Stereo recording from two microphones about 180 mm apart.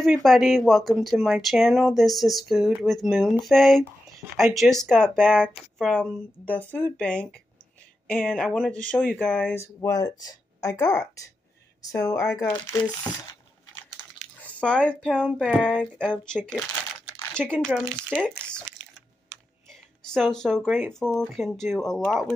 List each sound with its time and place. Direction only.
0.0 s a woman's voice: centre (ahead or behind); by 12.8 s 15° left (ahead or behind)
14.4 s speech: 5° left (ahead or behind)
17.6 s speech: 5° left (ahead or behind)
20.1 s speech: 5° left (ahead or behind)